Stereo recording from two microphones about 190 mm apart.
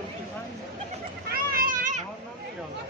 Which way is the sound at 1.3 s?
50° right (ahead or behind).